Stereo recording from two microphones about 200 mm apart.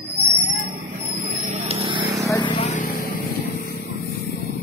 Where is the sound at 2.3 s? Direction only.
25° left (ahead or behind).